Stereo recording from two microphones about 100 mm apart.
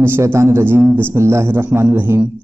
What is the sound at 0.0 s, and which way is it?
A man's voice, 25° right (ahead or behind).